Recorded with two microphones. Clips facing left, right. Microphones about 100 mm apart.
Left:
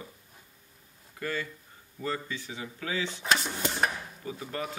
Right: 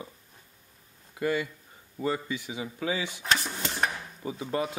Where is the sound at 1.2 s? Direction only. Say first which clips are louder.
Right 6 dB; 15° right (ahead or behind).